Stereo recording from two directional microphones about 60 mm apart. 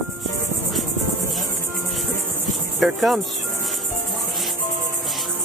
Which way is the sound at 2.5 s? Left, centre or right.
Centre.